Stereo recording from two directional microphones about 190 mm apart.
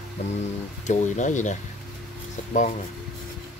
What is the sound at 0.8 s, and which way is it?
Speech, 40° left (ahead or behind).